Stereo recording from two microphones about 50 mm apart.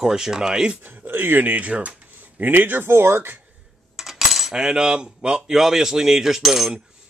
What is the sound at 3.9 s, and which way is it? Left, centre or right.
Cutlery, centre.